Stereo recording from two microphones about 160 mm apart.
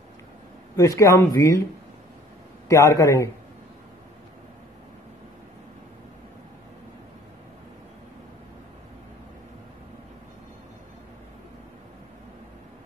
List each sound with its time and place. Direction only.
0.7 s speech: 20° left (ahead or behind)
2.7 s speech: 20° left (ahead or behind)